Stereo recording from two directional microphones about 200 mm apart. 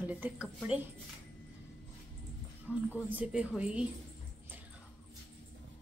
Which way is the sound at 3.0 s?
5° right (ahead or behind).